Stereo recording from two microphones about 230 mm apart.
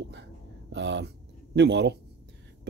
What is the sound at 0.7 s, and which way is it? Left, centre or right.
Speech, right.